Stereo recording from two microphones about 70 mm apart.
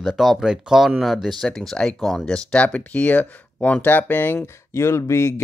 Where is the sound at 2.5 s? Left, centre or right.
Centre.